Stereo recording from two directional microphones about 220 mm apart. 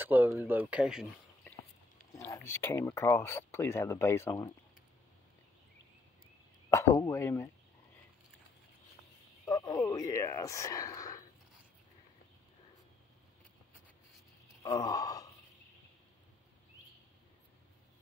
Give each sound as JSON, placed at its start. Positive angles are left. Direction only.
{"t": 0.0, "sound": "speech", "side_deg": -10}
{"t": 2.1, "sound": "speech", "side_deg": 10}
{"t": 6.7, "sound": "speech", "side_deg": 10}
{"t": 9.5, "sound": "speech", "side_deg": 15}
{"t": 14.6, "sound": "a sound", "side_deg": 15}